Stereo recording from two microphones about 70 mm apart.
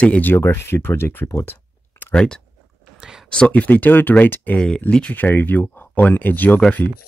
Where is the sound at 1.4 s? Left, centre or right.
Left.